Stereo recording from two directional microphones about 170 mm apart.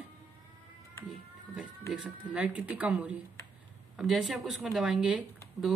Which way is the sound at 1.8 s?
5° right (ahead or behind).